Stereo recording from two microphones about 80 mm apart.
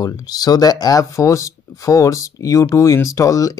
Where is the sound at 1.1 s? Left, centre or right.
Left.